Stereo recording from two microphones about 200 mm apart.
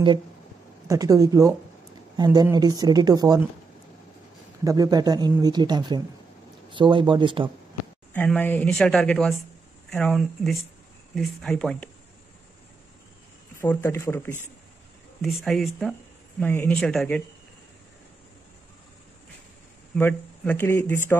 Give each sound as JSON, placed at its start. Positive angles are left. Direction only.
{"t": 0.8, "sound": "speech", "side_deg": -15}
{"t": 4.6, "sound": "speech", "side_deg": -20}
{"t": 8.1, "sound": "speech", "side_deg": 10}
{"t": 13.6, "sound": "speech", "side_deg": 10}
{"t": 15.4, "sound": "speech", "side_deg": 0}
{"t": 20.0, "sound": "speech", "side_deg": 10}